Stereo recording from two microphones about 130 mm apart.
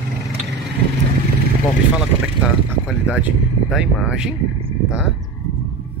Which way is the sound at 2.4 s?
10° right (ahead or behind).